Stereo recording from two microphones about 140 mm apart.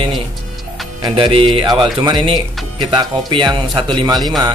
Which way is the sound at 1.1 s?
40° right (ahead or behind).